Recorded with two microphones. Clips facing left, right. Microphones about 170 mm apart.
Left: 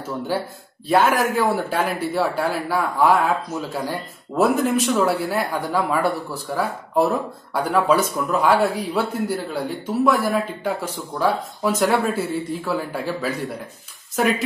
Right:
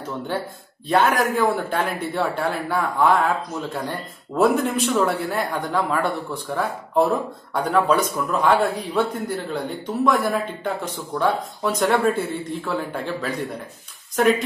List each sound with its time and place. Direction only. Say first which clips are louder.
0.8 s speech: left 1 dB; 5° left (ahead or behind)